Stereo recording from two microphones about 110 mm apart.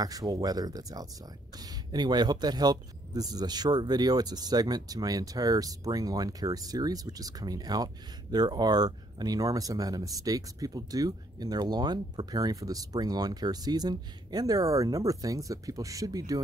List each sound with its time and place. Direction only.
0.0 s speech: 35° right (ahead or behind)